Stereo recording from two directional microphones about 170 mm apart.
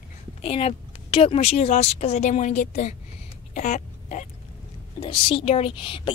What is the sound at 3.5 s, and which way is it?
Throat clearing, 45° left (ahead or behind).